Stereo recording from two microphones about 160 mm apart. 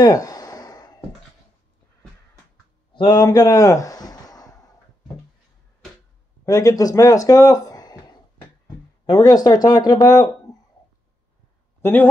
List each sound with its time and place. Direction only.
0.0 s a sound: 20° left (ahead or behind)
2.9 s speech: 30° left (ahead or behind)
6.4 s speech: 20° left (ahead or behind)
11.8 s speech: 10° left (ahead or behind)